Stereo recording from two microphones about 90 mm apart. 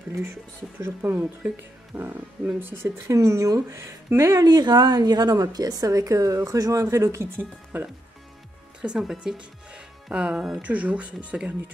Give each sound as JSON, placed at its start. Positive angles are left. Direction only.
{"t": 0.1, "sound": "speech", "side_deg": -30}
{"t": 3.1, "sound": "a woman's voice", "side_deg": -35}
{"t": 7.3, "sound": "speech", "side_deg": -20}
{"t": 8.8, "sound": "speech", "side_deg": -5}